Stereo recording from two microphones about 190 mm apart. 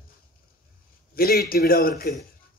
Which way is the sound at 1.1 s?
55° left (ahead or behind).